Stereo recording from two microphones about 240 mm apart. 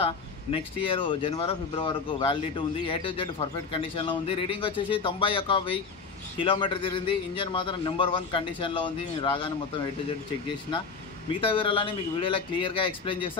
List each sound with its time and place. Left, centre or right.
0.0 s speech: left
11.4 s speech: left